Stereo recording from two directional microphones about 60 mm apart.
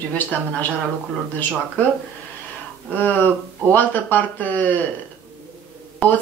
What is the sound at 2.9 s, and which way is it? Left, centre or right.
Speech, left.